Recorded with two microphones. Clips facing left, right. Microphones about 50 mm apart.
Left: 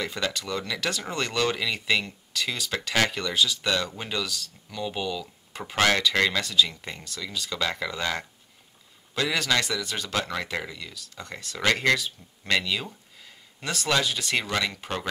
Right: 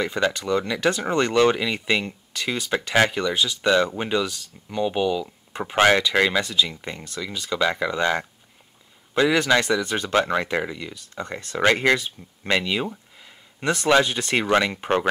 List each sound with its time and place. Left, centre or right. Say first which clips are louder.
0.0 s speech: right 7 dB; right
3.6 s speech: right 8 dB; right